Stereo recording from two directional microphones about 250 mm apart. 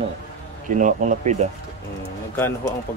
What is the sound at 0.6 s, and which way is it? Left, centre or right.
Speech, right.